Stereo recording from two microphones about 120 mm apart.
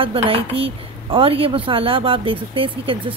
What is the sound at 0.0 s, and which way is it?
Speech, 50° right (ahead or behind).